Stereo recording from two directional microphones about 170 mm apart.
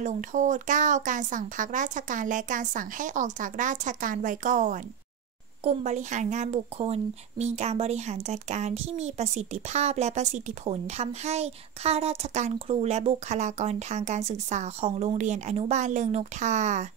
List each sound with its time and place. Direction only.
0.0 s speech: 45° right (ahead or behind)